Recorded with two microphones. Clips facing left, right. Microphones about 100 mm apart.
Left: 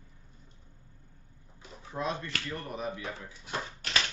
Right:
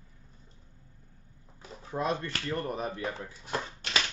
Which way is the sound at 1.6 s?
45° right (ahead or behind).